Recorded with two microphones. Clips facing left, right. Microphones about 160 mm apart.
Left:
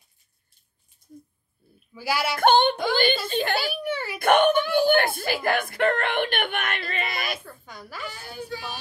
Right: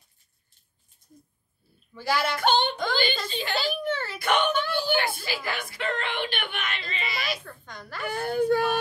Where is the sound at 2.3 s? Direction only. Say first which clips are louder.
Left 5 dB; 55° left (ahead or behind).